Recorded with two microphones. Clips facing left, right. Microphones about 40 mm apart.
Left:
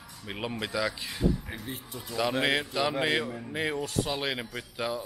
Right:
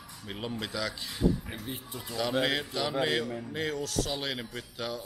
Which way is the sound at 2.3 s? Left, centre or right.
Centre.